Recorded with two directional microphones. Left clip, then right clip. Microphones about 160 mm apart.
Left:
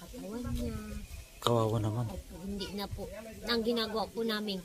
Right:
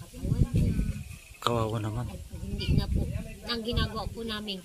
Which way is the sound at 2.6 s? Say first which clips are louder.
Right 6 dB; 15° left (ahead or behind).